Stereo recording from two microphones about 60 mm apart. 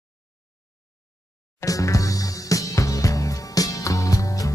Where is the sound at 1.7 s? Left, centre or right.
Left.